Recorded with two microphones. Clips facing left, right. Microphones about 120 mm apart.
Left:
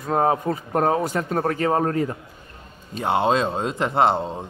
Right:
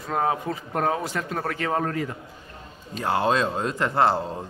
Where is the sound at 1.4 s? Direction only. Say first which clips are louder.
Left 5 dB; 35° left (ahead or behind).